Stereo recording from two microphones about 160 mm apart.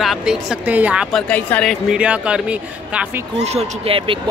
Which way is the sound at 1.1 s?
5° left (ahead or behind).